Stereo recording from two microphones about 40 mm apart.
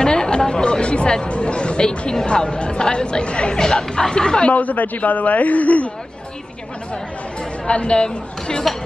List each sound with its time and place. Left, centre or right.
0.0 s chatter: left
0.4 s speech: left
4.5 s a man's voice: left
7.6 s speech: left